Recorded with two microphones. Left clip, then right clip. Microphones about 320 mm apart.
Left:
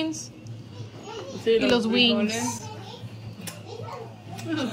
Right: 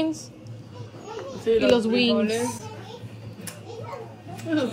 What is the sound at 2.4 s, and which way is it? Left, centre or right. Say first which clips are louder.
Speech: right 1 dB; left.